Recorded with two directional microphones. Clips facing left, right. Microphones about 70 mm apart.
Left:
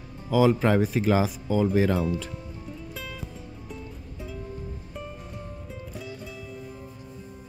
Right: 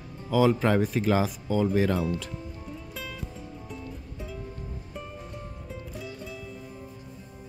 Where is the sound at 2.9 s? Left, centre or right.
Centre.